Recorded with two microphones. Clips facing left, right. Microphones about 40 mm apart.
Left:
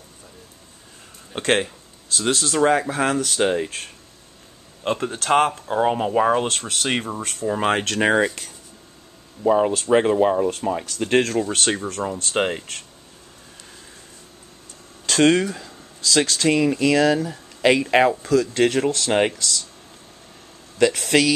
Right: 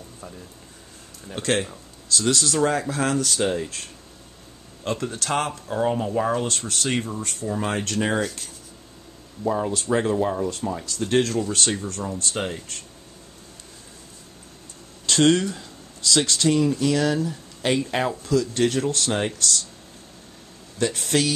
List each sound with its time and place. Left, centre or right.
1.3 s speech: left
9.5 s speech: left
15.0 s speech: left
15.5 s speech: left
20.8 s speech: left